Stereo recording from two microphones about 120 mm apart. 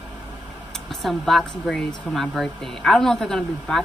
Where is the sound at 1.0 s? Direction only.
Centre (ahead or behind).